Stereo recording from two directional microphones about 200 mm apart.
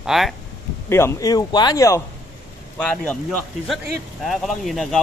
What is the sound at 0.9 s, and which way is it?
Speech, 15° left (ahead or behind).